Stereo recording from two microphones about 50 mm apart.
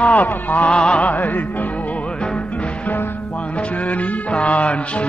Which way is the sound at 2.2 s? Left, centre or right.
Left.